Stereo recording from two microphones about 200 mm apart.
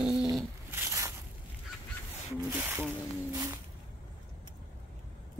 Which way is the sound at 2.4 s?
10° right (ahead or behind).